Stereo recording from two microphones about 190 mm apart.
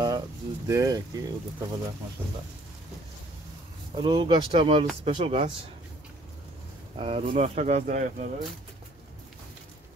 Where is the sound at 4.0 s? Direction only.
25° right (ahead or behind).